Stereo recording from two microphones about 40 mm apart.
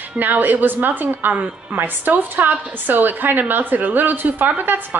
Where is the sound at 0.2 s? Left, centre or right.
Right.